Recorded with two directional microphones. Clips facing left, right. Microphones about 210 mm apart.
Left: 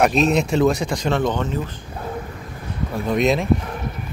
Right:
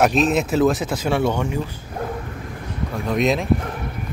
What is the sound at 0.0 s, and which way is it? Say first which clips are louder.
Speech: even; centre (ahead or behind).